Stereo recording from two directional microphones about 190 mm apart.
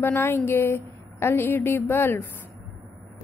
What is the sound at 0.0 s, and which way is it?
A woman's voice, 10° left (ahead or behind).